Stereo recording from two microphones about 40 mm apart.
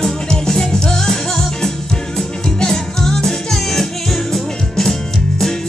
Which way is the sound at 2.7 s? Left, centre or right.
Centre.